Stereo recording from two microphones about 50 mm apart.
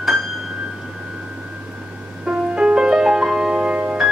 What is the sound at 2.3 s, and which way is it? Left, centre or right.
Music, centre.